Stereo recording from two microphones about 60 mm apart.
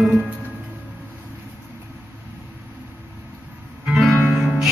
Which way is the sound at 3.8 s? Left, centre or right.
Centre.